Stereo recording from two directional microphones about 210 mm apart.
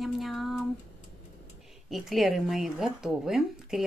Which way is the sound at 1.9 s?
Centre (ahead or behind).